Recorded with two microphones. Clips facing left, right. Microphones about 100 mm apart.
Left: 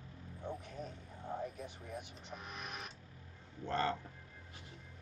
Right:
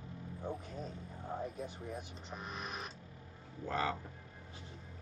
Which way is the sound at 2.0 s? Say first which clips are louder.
Right 2 dB; 35° right (ahead or behind).